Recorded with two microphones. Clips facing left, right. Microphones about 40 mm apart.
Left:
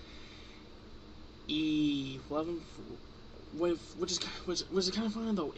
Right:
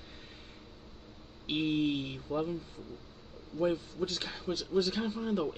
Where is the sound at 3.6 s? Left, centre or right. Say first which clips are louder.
Right 2 dB; centre.